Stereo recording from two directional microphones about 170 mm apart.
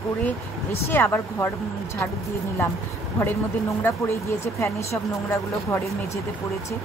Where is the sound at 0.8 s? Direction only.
10° left (ahead or behind).